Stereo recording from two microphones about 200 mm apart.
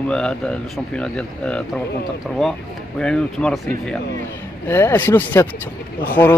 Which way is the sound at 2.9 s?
5° left (ahead or behind).